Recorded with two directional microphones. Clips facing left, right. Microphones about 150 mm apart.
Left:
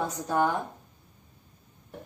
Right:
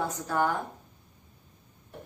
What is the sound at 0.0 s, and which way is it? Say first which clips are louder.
Speech: left 2 dB; 20° left (ahead or behind).